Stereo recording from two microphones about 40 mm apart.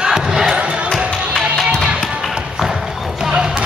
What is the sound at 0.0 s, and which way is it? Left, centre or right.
Crowd, centre.